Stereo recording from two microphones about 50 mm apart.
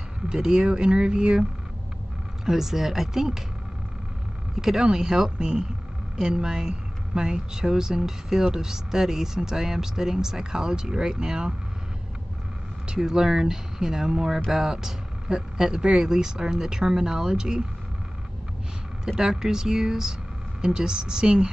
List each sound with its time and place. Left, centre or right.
0.3 s speech: centre
2.4 s speech: centre
4.6 s speech: centre
12.8 s speech: centre
19.0 s speech: centre